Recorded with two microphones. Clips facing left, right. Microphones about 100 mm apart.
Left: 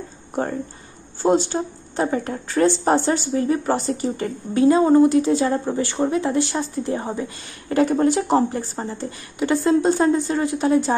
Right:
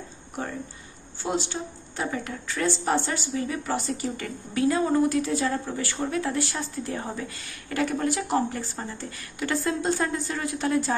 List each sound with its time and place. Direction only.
1.2 s speech: 40° left (ahead or behind); by 11.0 s 20° left (ahead or behind)